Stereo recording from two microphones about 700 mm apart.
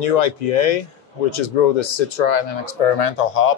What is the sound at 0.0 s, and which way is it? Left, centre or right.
Speech, left.